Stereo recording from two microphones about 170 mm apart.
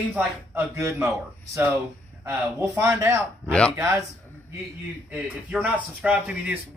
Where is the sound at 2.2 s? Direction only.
15° right (ahead or behind).